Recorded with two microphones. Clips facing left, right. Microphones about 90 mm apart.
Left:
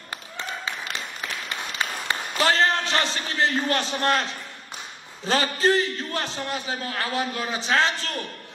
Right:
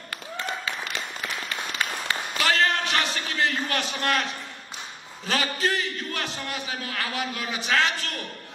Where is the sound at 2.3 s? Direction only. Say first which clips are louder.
Left 2 dB; 30° left (ahead or behind).